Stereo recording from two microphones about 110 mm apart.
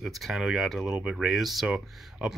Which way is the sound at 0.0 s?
Centre (ahead or behind).